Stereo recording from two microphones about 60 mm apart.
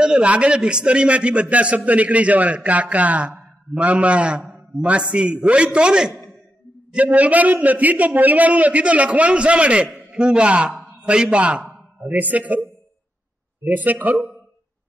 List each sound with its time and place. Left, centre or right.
0.0 s a man's voice: centre
13.7 s a man's voice: right